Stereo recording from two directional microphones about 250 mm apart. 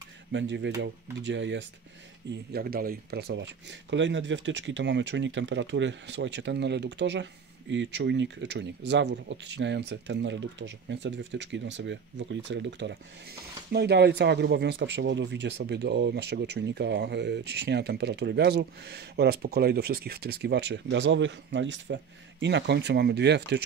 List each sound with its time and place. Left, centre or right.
0.3 s speech: right